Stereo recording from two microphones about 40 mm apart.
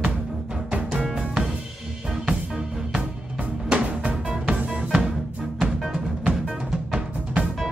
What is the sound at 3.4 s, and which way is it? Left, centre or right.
Music, right.